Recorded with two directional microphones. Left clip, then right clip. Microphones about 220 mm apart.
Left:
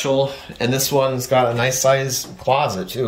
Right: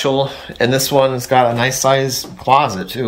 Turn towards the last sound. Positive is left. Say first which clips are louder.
# right 5 dB
turn(degrees=-10)  # may be behind; listen again after turning